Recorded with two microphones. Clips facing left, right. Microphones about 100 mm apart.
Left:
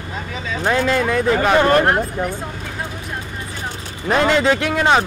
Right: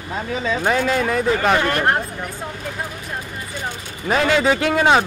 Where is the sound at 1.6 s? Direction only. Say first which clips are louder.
Left 6 dB; 35° left (ahead or behind).